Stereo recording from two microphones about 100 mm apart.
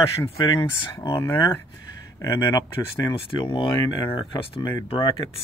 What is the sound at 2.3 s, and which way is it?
Speech, 45° left (ahead or behind).